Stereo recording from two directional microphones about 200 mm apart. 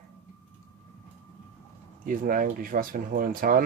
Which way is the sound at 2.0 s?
45° right (ahead or behind).